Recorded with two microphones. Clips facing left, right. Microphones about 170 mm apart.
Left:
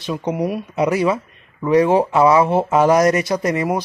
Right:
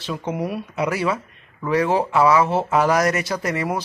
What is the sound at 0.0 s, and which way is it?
Speech, 15° left (ahead or behind).